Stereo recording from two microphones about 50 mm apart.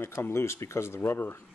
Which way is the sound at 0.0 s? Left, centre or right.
Left.